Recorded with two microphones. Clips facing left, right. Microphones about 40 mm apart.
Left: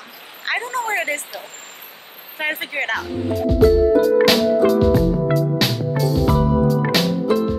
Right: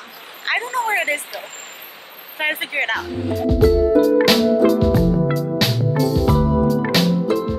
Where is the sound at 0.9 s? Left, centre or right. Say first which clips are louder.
Right 2 dB; centre.